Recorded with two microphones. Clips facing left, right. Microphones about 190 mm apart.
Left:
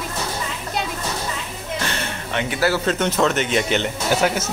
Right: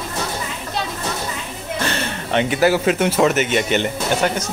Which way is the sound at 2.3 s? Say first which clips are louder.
Right 5 dB; 20° right (ahead or behind).